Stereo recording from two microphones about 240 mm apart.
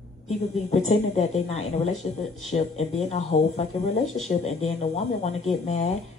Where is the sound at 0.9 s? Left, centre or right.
Left.